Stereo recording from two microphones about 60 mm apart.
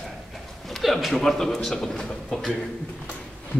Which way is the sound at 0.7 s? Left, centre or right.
Centre.